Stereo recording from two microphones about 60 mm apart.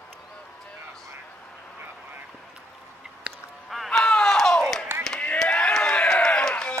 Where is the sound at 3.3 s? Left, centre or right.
Right.